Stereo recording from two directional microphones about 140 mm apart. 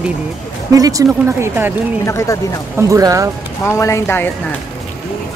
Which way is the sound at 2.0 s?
20° left (ahead or behind).